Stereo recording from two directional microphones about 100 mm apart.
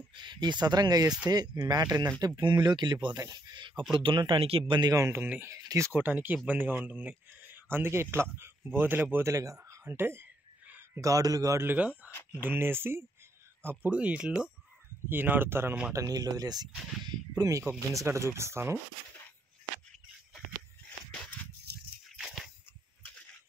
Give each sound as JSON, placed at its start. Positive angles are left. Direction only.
{"t": 0.1, "sound": "speech", "side_deg": -50}
{"t": 2.1, "sound": "speech", "side_deg": -45}
{"t": 4.7, "sound": "speech", "side_deg": -40}
{"t": 5.0, "sound": "speech", "side_deg": -20}
{"t": 5.5, "sound": "speech", "side_deg": -35}
{"t": 5.9, "sound": "speech", "side_deg": -20}
{"t": 11.0, "sound": "speech", "side_deg": -35}
{"t": 11.6, "sound": "speech", "side_deg": -15}
{"t": 12.1, "sound": "a sound", "side_deg": 20}
{"t": 12.4, "sound": "speech", "side_deg": -20}
{"t": 15.9, "sound": "speech", "side_deg": -35}
{"t": 17.6, "sound": "speech", "side_deg": -25}
{"t": 22.1, "sound": "a sound", "side_deg": 0}